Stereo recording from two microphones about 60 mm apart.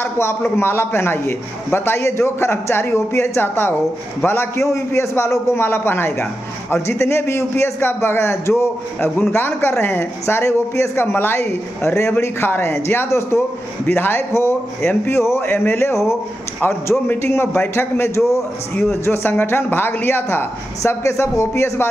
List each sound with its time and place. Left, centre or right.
0.0 s a man's voice: left
4.6 s a man's voice: left
10.2 s a man's voice: left
17.1 s a man's voice: left
20.8 s a man's voice: left